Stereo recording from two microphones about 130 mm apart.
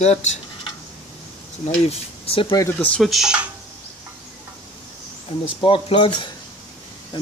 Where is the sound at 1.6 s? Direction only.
55° left (ahead or behind).